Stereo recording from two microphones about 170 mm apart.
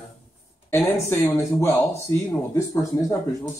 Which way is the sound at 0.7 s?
15° left (ahead or behind).